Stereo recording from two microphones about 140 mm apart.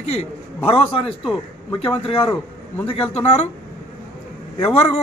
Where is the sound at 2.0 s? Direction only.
45° left (ahead or behind).